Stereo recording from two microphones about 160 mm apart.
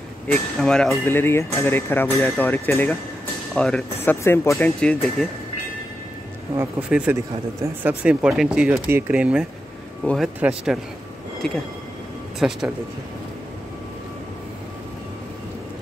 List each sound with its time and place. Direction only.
0.3 s speech: 5° left (ahead or behind)
6.6 s speech: 10° right (ahead or behind)
8.0 s speech: 5° right (ahead or behind)